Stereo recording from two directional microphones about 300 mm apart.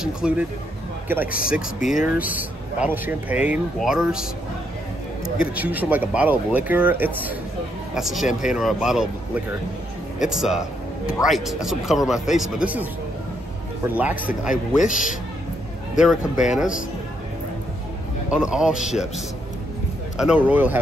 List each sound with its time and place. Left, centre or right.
0.0 s speech: centre
5.4 s a man's voice: centre
13.9 s speech: centre
14.8 s a man's voice: left
16.0 s speech: centre
18.3 s speech: centre
20.2 s speech: centre